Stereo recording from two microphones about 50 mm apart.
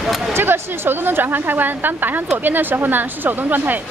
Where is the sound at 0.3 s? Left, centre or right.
Right.